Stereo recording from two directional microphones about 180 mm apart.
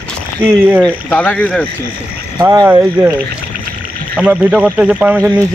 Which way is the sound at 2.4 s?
20° right (ahead or behind).